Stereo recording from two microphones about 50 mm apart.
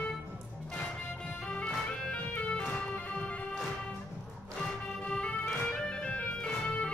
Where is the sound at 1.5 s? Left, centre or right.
Left.